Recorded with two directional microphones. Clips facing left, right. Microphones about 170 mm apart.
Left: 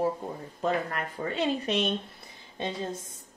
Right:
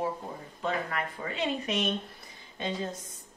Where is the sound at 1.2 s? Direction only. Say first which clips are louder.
Left 5 dB; 35° left (ahead or behind).